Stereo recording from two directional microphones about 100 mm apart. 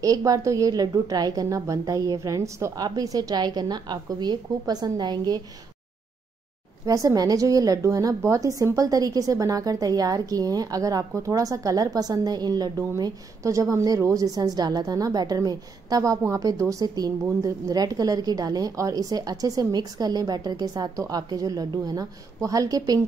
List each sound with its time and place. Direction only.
0.0 s a woman's voice: 35° right (ahead or behind)
6.9 s a woman's voice: 35° right (ahead or behind)